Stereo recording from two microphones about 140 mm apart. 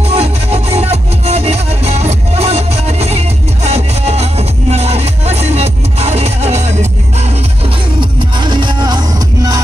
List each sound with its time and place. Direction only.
0.1 s music: 50° right (ahead or behind)
8.0 s music: 35° right (ahead or behind)